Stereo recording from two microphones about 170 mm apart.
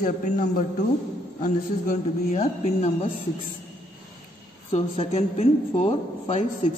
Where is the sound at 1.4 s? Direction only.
45° left (ahead or behind).